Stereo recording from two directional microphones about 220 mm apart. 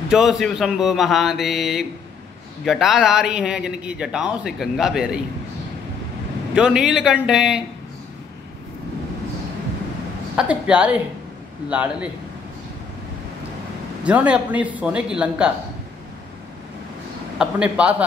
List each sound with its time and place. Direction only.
0.1 s a man's voice: centre (ahead or behind)
6.5 s a man's voice: 5° right (ahead or behind)
10.3 s a man's voice: 5° right (ahead or behind)
14.0 s a man's voice: 5° right (ahead or behind)
17.4 s a man's voice: 5° right (ahead or behind)